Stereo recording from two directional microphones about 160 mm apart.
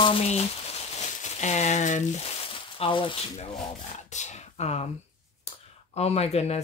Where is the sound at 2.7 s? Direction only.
35° left (ahead or behind).